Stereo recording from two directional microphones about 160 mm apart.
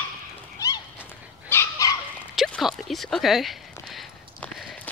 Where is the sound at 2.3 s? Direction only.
Centre (ahead or behind).